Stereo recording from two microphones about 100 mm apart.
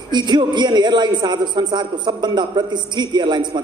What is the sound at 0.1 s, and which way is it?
A man's voice, 50° right (ahead or behind).